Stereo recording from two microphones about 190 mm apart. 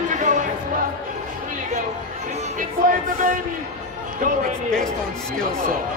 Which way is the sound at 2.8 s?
45° right (ahead or behind).